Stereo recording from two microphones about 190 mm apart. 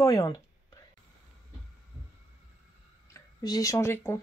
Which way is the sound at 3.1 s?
15° left (ahead or behind).